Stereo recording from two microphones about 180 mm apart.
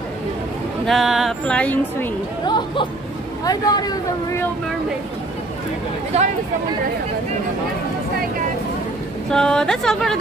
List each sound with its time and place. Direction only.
0.8 s speech: centre (ahead or behind)
2.4 s speech: 25° left (ahead or behind)
6.1 s speech: 35° right (ahead or behind)
9.3 s speech: 5° left (ahead or behind)